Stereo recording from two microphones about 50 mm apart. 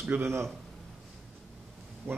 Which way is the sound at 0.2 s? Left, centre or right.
Right.